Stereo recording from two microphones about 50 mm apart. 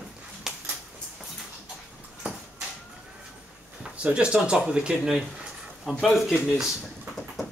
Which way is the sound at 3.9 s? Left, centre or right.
Right.